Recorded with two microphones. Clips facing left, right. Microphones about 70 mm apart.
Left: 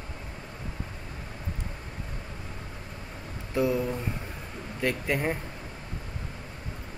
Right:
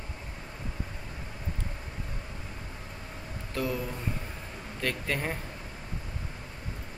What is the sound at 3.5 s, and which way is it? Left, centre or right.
Speech, centre.